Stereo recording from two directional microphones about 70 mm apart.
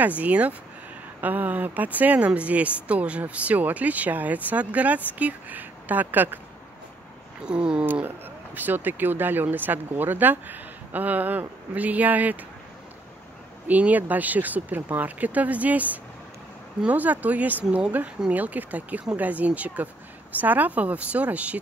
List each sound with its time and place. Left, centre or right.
0.0 s speech: right
7.4 s a sound: centre
7.8 s speech: right
13.7 s speech: right